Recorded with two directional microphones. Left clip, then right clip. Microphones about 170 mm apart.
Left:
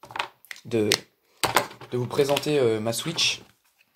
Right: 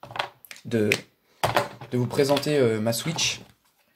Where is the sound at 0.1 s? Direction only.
20° left (ahead or behind).